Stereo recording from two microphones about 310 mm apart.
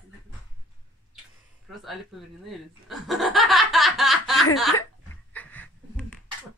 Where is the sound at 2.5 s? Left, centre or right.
Centre.